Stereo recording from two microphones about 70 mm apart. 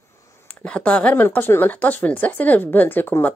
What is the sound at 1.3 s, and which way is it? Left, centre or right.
Speech, left.